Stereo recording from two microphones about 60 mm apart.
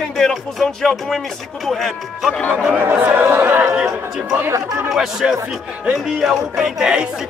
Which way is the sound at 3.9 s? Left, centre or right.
Centre.